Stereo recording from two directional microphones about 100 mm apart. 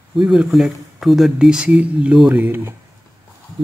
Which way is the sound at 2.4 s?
20° right (ahead or behind).